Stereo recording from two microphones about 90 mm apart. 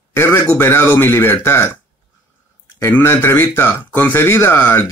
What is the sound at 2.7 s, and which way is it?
Speech, 25° left (ahead or behind).